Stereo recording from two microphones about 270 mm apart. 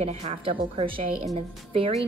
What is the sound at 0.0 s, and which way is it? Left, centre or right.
A woman's voice, right.